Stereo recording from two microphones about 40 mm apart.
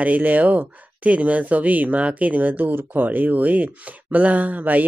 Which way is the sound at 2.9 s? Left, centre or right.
Right.